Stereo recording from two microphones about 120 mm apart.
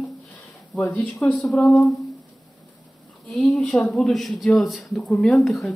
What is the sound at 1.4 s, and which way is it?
Speech, centre (ahead or behind).